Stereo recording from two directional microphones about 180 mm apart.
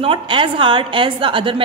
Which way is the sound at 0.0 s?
30° right (ahead or behind).